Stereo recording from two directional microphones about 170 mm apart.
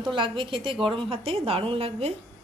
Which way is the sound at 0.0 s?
30° right (ahead or behind).